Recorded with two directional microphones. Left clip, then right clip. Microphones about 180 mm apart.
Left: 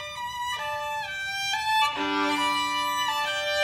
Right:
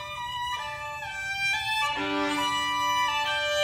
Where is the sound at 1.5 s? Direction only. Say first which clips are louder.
Left 4 dB; 25° left (ahead or behind).